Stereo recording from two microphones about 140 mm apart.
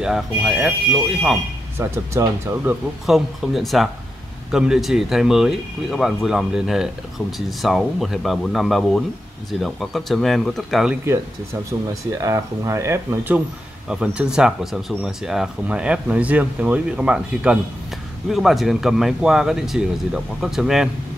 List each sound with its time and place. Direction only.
0.0 s speech: 5° right (ahead or behind)
1.8 s speech: 15° right (ahead or behind)
3.1 s speech: centre (ahead or behind)
11.9 s speech: 25° right (ahead or behind); by 20.9 s 5° right (ahead or behind)